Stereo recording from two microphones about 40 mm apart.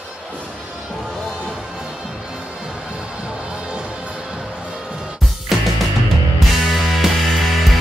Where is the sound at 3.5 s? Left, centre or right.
Right.